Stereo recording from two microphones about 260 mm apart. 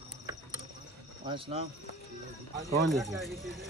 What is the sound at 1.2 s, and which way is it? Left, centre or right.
Speech, centre.